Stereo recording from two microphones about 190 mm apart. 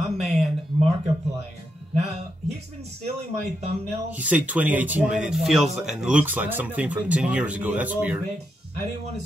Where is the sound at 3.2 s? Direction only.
35° right (ahead or behind).